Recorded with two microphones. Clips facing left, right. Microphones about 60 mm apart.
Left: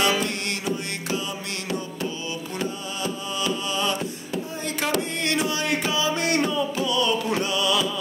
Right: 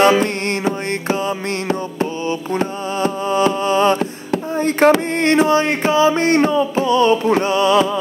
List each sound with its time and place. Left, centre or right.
0.0 s music: right
2.5 s music: right